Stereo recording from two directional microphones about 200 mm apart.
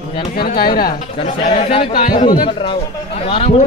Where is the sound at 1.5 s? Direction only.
30° left (ahead or behind).